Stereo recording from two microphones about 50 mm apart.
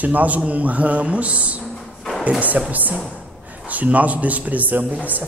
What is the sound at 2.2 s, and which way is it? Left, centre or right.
A woman's voice, right.